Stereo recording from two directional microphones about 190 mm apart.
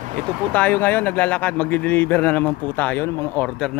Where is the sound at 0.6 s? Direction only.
10° left (ahead or behind).